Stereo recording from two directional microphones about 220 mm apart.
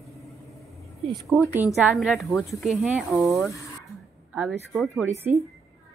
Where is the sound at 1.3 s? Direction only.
10° right (ahead or behind).